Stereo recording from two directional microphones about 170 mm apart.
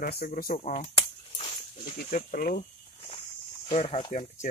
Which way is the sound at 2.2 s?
55° left (ahead or behind).